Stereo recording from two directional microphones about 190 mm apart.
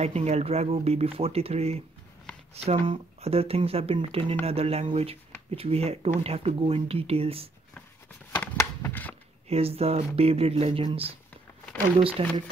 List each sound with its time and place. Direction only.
0.0 s speech: 35° right (ahead or behind)
8.4 s a sound: 10° left (ahead or behind)
9.5 s speech: 30° right (ahead or behind)